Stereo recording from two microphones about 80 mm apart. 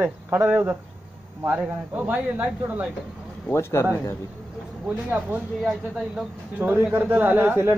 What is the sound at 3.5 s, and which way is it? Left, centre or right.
Speech, left.